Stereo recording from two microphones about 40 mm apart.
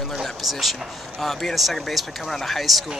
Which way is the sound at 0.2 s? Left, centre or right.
Centre.